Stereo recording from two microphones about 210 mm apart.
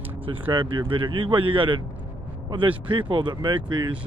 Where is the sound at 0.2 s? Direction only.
25° right (ahead or behind).